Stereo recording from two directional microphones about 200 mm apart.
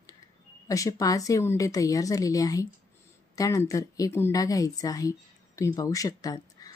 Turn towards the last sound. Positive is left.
turn(degrees=20)  # may be behind; listen again after turning